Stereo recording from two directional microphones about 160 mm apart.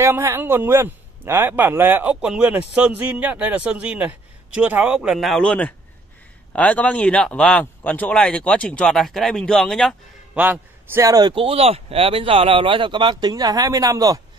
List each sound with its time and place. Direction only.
0.0 s a man's voice: 15° right (ahead or behind); by 9.9 s centre (ahead or behind)
10.3 s a man's voice: 10° right (ahead or behind)